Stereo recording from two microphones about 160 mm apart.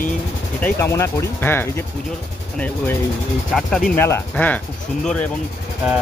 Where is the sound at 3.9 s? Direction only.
15° left (ahead or behind).